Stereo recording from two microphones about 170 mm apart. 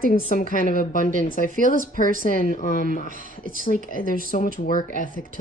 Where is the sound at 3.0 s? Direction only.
55° right (ahead or behind).